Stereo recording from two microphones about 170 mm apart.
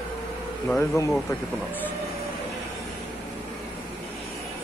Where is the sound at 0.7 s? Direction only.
15° left (ahead or behind).